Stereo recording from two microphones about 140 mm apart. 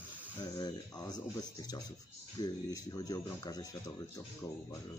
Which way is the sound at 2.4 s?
25° left (ahead or behind).